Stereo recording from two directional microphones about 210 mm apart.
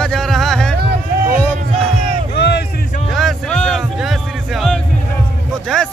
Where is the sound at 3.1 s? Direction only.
5° left (ahead or behind).